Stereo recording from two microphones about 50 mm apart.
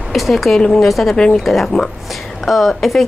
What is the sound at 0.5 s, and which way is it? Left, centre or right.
Speech, centre.